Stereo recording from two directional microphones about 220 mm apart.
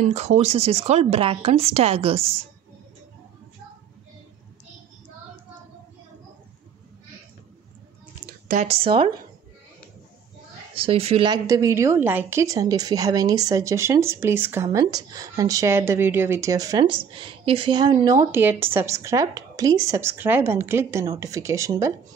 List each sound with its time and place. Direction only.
0.0 s speech: 30° right (ahead or behind)
8.3 s a sound: 40° right (ahead or behind)
8.6 s speech: 25° right (ahead or behind)
10.7 s a woman's voice: 25° right (ahead or behind)